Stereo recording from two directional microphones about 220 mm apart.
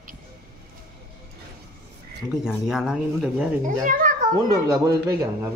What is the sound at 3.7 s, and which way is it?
Speech, 35° right (ahead or behind).